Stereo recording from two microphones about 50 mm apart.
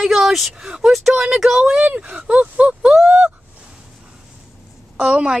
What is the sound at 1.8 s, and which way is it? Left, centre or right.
Speech, right.